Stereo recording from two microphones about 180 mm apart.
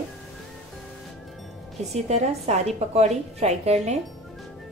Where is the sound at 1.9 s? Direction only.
35° right (ahead or behind).